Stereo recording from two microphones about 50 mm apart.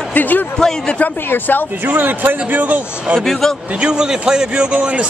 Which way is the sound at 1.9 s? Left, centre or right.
Right.